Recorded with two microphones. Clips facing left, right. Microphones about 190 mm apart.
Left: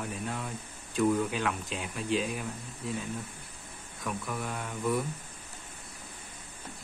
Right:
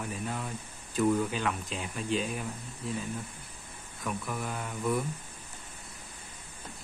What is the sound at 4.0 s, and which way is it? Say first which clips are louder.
Speech: even; centre (ahead or behind).